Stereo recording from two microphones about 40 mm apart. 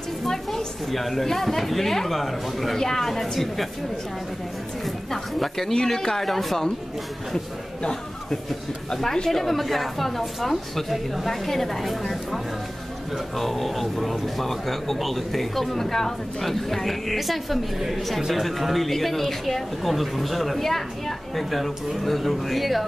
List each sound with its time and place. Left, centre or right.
0.3 s a woman's voice: centre
5.1 s a woman's voice: centre
7.8 s a man's voice: centre
13.4 s a man's voice: centre